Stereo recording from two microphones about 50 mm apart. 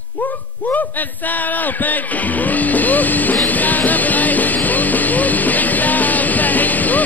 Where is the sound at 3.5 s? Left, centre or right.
Left.